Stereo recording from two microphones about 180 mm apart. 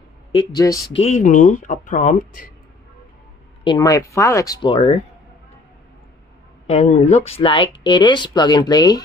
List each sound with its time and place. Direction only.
0.9 s speech: 40° left (ahead or behind)
3.6 s speech: 20° left (ahead or behind)
6.7 s speech: 35° left (ahead or behind)